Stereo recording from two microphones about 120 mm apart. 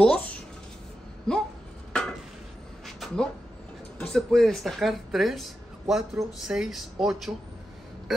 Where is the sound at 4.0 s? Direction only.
5° left (ahead or behind).